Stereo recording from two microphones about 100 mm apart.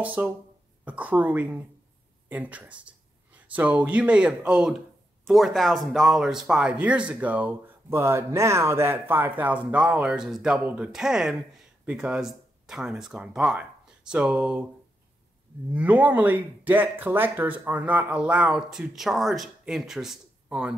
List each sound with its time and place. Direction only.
0.0 s speech: 15° right (ahead or behind)
15.7 s speech: 15° right (ahead or behind)